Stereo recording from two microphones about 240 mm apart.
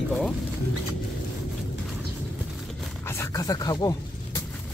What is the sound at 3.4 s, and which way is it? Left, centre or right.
Speech, centre.